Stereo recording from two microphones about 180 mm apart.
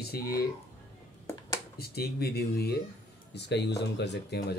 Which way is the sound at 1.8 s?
60° left (ahead or behind).